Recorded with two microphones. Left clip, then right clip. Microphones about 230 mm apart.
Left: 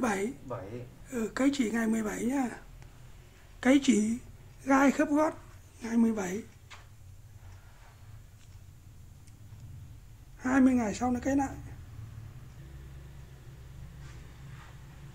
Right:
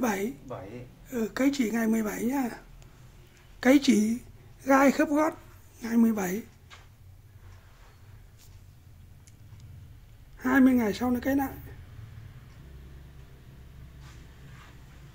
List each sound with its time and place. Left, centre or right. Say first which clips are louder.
0.0 s a woman's voice: right 2 dB; centre
10.4 s speech: right 3 dB; centre